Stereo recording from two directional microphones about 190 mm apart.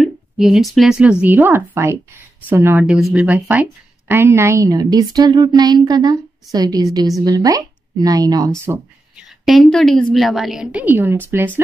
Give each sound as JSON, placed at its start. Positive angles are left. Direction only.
{"t": 0.0, "sound": "a woman's voice", "side_deg": 0}
{"t": 9.4, "sound": "a woman's voice", "side_deg": 0}